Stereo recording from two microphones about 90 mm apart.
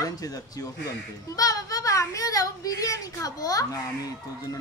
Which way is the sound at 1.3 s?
40° left (ahead or behind).